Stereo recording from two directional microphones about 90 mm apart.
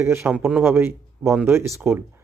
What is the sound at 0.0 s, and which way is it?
Speech, 25° right (ahead or behind).